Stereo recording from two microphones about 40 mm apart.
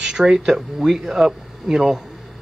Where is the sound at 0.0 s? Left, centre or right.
Centre.